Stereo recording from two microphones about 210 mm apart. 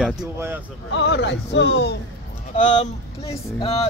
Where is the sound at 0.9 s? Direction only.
55° left (ahead or behind).